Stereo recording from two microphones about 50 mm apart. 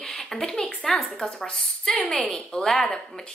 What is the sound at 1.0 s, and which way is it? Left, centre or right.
Speech, centre.